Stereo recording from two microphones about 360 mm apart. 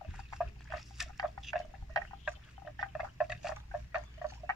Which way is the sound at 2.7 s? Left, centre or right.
Centre.